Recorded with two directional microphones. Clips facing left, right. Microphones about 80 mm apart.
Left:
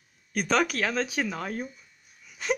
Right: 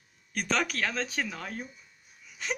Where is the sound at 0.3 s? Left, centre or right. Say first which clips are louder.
Left 5 dB; centre.